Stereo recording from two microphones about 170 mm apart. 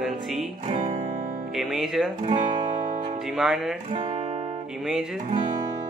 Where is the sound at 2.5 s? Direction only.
30° right (ahead or behind).